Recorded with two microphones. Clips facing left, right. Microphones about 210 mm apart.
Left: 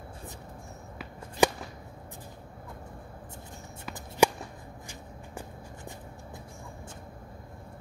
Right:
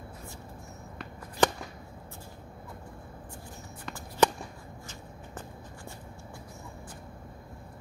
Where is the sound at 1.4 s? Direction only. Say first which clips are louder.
Left 1 dB; 10° left (ahead or behind).